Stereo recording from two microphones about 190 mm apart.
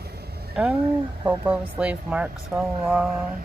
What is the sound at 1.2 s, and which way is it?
Speech, 5° right (ahead or behind).